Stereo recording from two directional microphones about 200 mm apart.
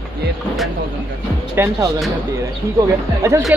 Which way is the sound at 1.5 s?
10° right (ahead or behind).